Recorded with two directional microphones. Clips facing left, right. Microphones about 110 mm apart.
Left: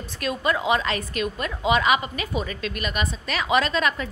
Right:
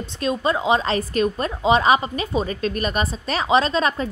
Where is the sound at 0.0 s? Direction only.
25° right (ahead or behind).